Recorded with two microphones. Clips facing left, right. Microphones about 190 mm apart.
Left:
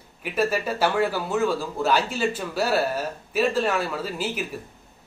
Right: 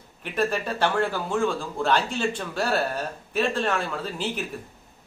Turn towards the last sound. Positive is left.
turn(degrees=5)  # may be behind; listen again after turning